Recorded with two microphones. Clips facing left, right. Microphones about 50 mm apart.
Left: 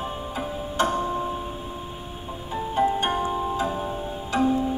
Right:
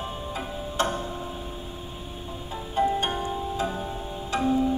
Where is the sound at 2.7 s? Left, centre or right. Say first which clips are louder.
Left 2 dB; centre.